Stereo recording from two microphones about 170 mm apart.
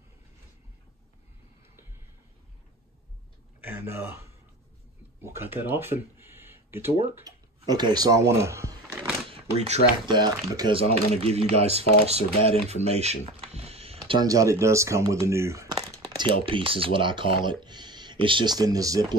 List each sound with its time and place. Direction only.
3.6 s speech: 10° right (ahead or behind)
9.3 s a sound: 40° right (ahead or behind)
10.0 s speech: 25° right (ahead or behind)
10.8 s speech: 35° right (ahead or behind)
14.2 s speech: 20° right (ahead or behind)
16.2 s speech: 30° right (ahead or behind)